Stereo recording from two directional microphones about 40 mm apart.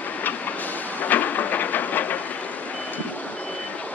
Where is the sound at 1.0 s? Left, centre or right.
Left.